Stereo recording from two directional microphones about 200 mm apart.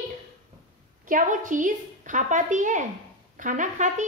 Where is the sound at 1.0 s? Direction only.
40° right (ahead or behind).